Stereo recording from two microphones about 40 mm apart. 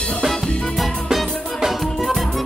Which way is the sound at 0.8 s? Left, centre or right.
Centre.